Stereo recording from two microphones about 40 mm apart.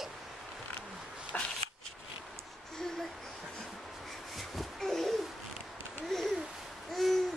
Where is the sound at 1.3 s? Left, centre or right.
Left.